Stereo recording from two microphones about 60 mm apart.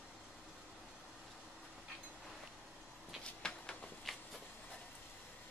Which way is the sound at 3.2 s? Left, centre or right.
Centre.